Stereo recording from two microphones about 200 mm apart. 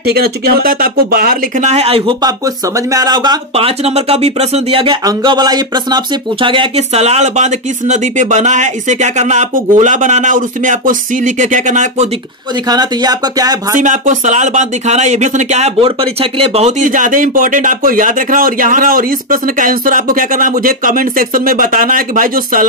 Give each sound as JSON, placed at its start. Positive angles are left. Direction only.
{"t": 0.1, "sound": "speech", "side_deg": -50}
{"t": 12.6, "sound": "speech", "side_deg": -20}
{"t": 13.7, "sound": "speech", "side_deg": -40}